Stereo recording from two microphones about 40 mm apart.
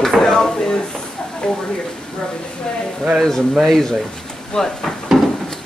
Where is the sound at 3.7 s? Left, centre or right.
Centre.